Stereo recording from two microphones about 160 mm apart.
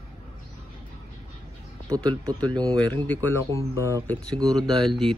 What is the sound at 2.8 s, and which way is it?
Speech, 10° left (ahead or behind).